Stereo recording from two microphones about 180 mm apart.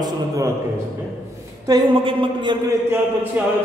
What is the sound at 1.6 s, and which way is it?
Speech, 25° right (ahead or behind).